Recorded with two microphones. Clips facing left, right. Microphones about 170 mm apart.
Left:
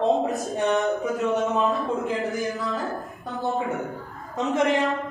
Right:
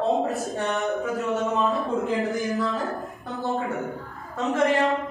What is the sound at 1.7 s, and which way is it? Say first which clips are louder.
Speech: right 1 dB; centre (ahead or behind).